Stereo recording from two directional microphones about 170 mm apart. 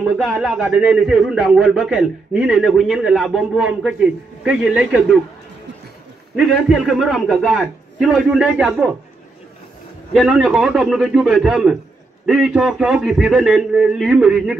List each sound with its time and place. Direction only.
0.0 s a man's voice: 5° right (ahead or behind)
6.3 s a man's voice: centre (ahead or behind)
10.1 s a man's voice: centre (ahead or behind)